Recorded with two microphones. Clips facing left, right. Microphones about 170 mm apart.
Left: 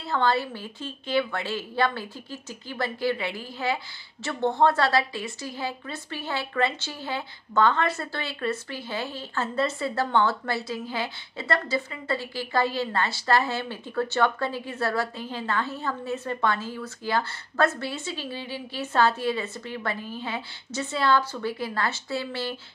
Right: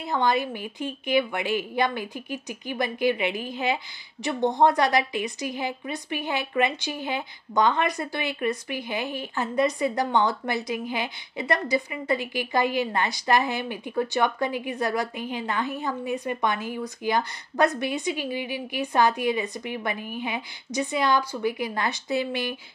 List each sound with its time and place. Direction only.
0.0 s a woman's voice: 15° right (ahead or behind)